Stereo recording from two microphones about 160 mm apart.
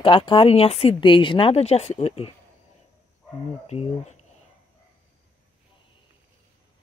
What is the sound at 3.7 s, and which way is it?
Speech, 40° left (ahead or behind).